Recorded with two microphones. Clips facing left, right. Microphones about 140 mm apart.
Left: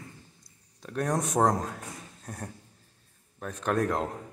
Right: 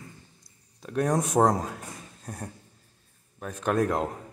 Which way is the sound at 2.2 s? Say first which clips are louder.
Right 2 dB; centre (ahead or behind).